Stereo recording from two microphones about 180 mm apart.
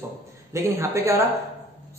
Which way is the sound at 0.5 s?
15° right (ahead or behind).